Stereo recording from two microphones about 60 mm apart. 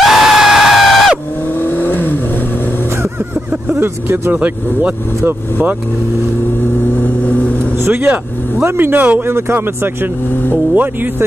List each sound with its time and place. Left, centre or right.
0.0 s screaming: centre
1.6 s vehicle: left
3.7 s speech: right
4.3 s speech: right
7.8 s speech: right